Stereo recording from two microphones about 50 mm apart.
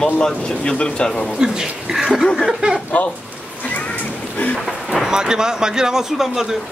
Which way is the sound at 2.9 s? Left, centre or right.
Left.